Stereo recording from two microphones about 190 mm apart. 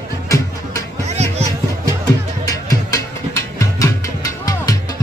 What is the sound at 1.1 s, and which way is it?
Music, 35° right (ahead or behind).